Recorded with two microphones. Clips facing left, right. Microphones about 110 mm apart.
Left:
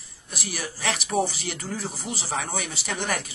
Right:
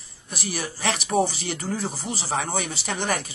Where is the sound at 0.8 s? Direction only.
30° right (ahead or behind).